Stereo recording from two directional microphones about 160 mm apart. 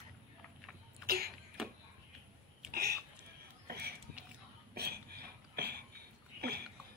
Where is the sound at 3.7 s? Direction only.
80° right.